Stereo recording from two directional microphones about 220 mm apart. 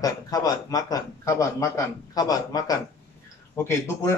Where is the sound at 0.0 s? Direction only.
15° left (ahead or behind).